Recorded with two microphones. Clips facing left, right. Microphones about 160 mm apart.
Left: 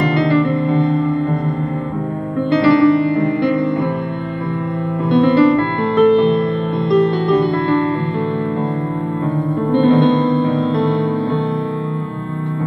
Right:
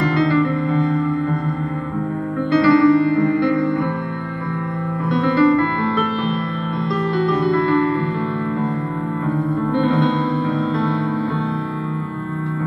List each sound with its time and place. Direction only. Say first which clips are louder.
0.0 s music: left 2 dB; 25° left (ahead or behind)
2.5 s music: left 1 dB; 25° left (ahead or behind)
5.1 s music: left 4 dB; 25° left (ahead or behind)
9.7 s music: left 7 dB; 25° left (ahead or behind)